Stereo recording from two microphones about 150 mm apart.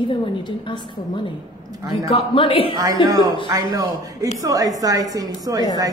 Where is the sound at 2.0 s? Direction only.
35° left (ahead or behind).